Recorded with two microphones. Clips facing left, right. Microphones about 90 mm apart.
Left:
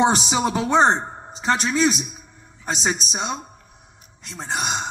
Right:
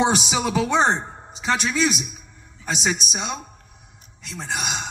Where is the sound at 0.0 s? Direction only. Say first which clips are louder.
Left 2 dB; 30° left (ahead or behind).